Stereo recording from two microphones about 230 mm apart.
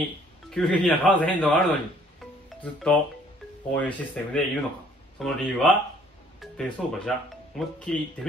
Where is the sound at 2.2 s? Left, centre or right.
Centre.